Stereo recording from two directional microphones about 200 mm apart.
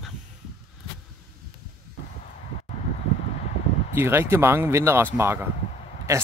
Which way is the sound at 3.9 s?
10° right (ahead or behind).